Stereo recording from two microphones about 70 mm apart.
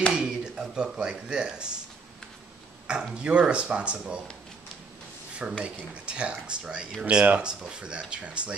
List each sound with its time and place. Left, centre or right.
0.1 s speech: centre
3.2 s speech: centre
5.4 s speech: centre